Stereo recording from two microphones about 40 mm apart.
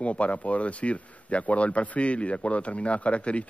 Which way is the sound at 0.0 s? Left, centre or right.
Left.